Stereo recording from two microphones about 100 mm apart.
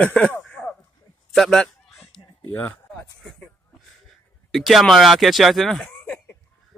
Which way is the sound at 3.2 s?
10° left (ahead or behind).